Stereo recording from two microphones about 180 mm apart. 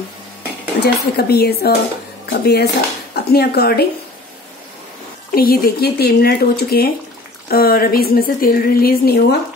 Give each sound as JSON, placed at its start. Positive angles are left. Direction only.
{"t": 0.7, "sound": "speech", "side_deg": 60}
{"t": 5.3, "sound": "speech", "side_deg": 55}